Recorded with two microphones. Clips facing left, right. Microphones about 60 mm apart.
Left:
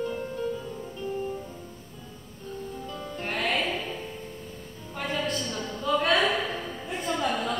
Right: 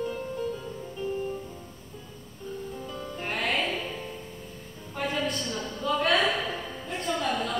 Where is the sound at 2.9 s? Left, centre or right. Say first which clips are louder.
Left 1 dB; centre.